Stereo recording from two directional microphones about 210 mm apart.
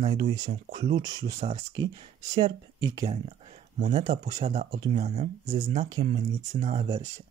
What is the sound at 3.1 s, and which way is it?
Speech, 30° right (ahead or behind).